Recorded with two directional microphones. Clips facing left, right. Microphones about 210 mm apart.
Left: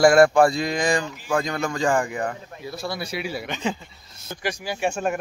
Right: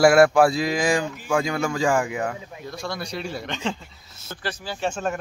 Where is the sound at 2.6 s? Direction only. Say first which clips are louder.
Left 2 dB; 5° left (ahead or behind).